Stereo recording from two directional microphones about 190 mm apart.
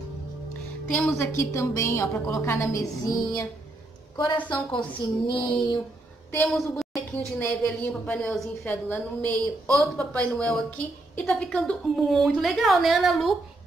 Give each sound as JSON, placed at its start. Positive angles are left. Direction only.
{"t": 0.9, "sound": "a woman's voice", "side_deg": 10}
{"t": 4.5, "sound": "speech", "side_deg": 25}
{"t": 6.5, "sound": "a woman's voice", "side_deg": 0}
{"t": 7.3, "sound": "a woman's voice", "side_deg": 10}